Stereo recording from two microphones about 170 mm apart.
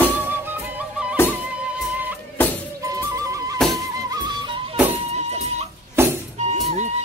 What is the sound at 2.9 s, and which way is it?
Music, 20° right (ahead or behind).